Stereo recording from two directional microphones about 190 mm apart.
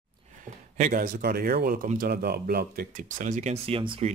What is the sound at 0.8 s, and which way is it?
Speech, 45° right (ahead or behind).